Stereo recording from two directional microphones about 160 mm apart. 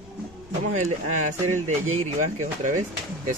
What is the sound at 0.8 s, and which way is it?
Speech, 45° right (ahead or behind).